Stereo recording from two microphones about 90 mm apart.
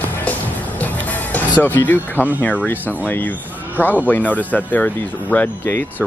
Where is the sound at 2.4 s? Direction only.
20° left (ahead or behind).